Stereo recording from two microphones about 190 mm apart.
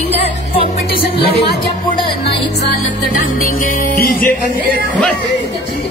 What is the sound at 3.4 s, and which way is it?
Music, 50° left (ahead or behind).